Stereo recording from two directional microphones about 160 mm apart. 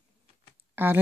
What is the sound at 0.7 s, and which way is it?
Speech, 10° right (ahead or behind).